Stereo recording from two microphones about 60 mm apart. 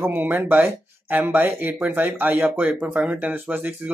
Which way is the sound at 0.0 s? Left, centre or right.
Right.